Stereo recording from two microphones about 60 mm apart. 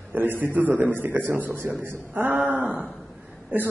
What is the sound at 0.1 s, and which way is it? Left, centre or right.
A man's voice, right.